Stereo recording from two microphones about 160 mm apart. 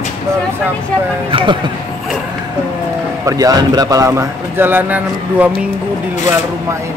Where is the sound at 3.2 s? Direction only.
25° right (ahead or behind).